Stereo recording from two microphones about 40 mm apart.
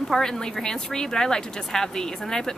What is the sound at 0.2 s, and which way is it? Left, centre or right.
A woman's voice, centre.